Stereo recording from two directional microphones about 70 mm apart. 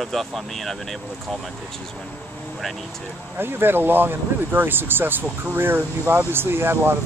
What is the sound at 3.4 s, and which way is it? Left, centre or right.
Speech, right.